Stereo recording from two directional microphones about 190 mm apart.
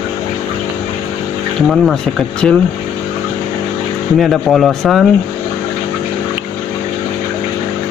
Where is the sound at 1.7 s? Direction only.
Centre (ahead or behind).